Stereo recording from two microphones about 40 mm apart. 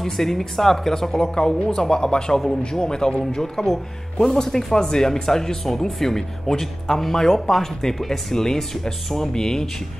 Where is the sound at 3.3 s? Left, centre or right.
Centre.